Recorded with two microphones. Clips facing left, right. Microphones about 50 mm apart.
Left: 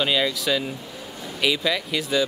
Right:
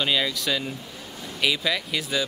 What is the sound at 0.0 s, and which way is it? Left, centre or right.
Speech, centre.